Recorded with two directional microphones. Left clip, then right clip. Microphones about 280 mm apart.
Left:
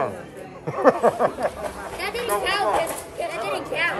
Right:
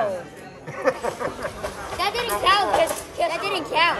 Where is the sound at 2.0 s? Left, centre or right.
Centre.